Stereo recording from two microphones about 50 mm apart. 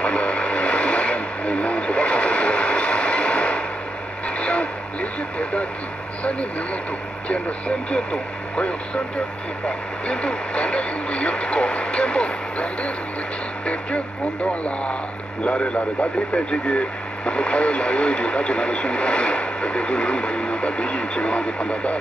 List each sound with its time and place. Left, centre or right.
0.0 s vehicle: left
4.4 s a sound: left
5.4 s radio: left
7.2 s speech: left